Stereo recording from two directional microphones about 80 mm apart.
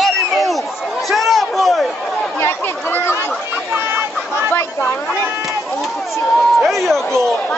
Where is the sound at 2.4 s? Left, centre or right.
Left.